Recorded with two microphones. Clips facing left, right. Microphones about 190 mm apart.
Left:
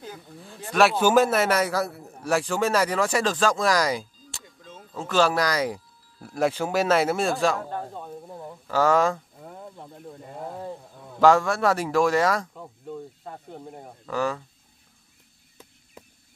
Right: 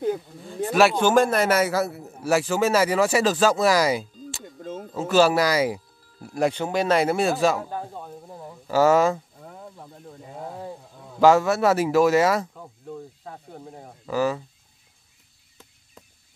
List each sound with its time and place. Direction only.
0.7 s a man's voice: centre (ahead or behind)
4.5 s a sound: 50° right (ahead or behind)
4.9 s a man's voice: 5° right (ahead or behind)